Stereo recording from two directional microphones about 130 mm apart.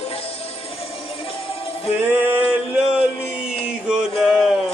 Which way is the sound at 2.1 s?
15° right (ahead or behind).